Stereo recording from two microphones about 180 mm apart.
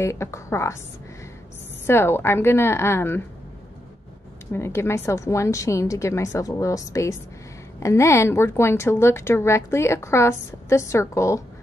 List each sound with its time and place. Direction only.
0.0 s a woman's voice: 15° left (ahead or behind)
1.9 s a woman's voice: 15° left (ahead or behind)
4.5 s a woman's voice: 15° left (ahead or behind)